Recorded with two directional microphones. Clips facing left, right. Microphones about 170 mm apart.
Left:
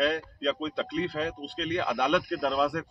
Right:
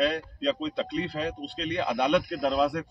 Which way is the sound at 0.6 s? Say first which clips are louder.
Even; 15° right (ahead or behind).